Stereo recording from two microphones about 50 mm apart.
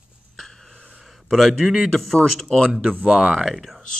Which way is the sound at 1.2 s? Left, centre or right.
Centre.